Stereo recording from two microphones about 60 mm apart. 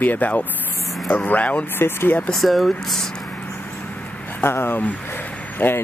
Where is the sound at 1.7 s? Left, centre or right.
Left.